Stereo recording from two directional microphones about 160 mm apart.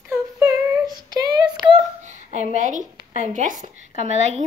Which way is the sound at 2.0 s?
45° right (ahead or behind).